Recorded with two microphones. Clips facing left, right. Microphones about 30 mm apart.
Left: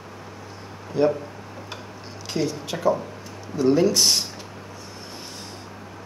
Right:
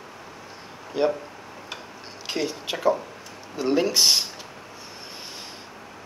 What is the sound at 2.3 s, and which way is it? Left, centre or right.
Speech, centre.